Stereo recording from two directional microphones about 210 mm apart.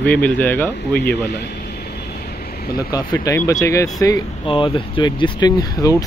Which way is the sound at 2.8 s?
20° left (ahead or behind).